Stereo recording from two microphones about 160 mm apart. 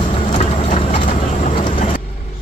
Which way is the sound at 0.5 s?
45° left (ahead or behind).